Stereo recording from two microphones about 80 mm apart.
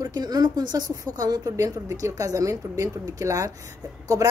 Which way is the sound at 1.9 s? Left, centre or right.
Right.